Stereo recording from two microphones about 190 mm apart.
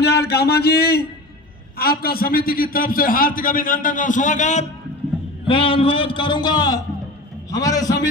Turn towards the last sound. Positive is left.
turn(degrees=20)  # may be behind; listen again after turning